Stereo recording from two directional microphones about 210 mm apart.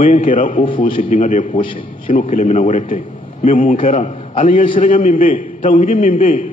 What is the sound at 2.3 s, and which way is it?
A man's voice, 40° left (ahead or behind).